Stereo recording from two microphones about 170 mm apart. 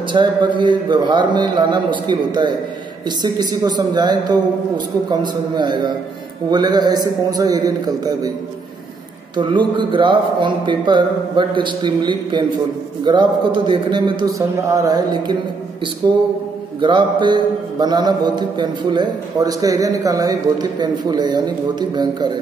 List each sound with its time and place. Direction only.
0.1 s speech: 25° right (ahead or behind)
9.4 s speech: 25° right (ahead or behind)
16.8 s speech: 25° right (ahead or behind)